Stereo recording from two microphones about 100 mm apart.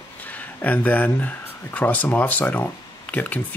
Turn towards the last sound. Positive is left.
turn(degrees=15)  # may be behind; listen again after turning